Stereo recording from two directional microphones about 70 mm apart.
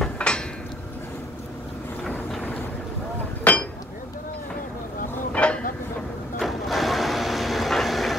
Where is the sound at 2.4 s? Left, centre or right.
Left.